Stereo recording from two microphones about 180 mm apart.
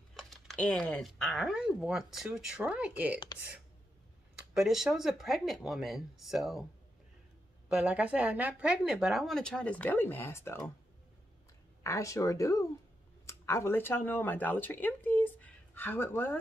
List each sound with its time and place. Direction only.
0.1 s speech: centre (ahead or behind)
4.6 s speech: centre (ahead or behind)
7.6 s speech: 5° right (ahead or behind); by 10.7 s 15° left (ahead or behind)
11.8 s speech: 15° left (ahead or behind)